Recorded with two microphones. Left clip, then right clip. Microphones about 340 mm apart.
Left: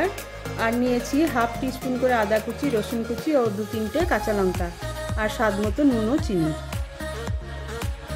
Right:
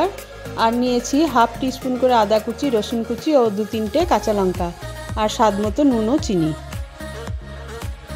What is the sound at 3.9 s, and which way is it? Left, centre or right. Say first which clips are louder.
Speech: right 5 dB; centre.